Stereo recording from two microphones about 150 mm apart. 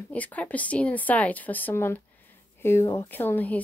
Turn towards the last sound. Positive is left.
turn(degrees=10)  # may be behind; listen again after turning